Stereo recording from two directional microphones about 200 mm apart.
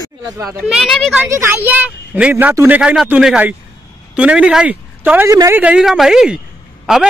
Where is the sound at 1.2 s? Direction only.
10° right (ahead or behind).